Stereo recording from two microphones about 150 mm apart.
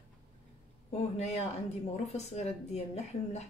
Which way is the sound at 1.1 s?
45° left (ahead or behind).